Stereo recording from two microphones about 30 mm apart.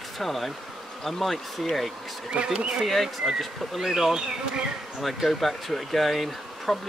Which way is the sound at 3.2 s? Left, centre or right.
Centre.